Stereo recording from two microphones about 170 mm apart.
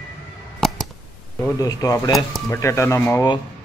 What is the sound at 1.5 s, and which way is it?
A man's voice, 20° left (ahead or behind).